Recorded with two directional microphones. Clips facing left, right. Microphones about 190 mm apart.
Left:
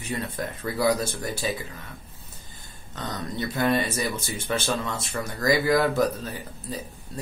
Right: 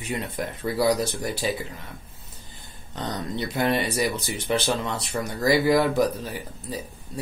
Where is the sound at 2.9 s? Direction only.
20° right (ahead or behind).